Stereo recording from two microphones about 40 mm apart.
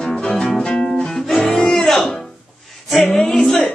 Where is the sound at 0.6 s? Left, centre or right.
Left.